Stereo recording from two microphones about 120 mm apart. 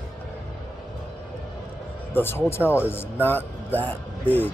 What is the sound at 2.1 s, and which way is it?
Speech, 20° left (ahead or behind).